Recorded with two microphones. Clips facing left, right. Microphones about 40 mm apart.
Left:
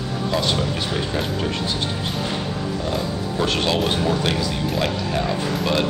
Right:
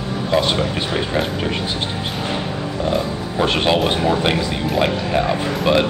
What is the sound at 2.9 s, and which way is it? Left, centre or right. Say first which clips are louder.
Speech: right 3 dB; right.